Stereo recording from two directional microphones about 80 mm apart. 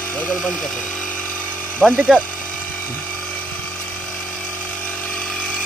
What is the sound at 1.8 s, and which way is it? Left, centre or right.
Speech, centre.